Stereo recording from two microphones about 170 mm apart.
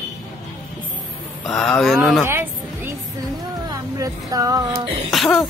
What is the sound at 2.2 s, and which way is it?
Music, 15° right (ahead or behind).